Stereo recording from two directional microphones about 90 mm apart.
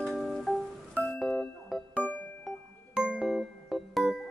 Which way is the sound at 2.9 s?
10° right (ahead or behind).